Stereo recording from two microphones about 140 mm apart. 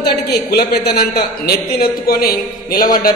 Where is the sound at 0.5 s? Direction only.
90° left.